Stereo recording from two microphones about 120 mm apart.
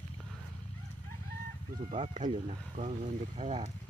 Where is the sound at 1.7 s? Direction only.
90° right.